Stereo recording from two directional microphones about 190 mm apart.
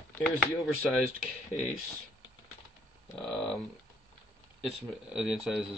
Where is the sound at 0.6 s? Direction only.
Centre (ahead or behind).